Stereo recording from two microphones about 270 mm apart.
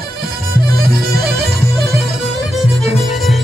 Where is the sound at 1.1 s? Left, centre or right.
Right.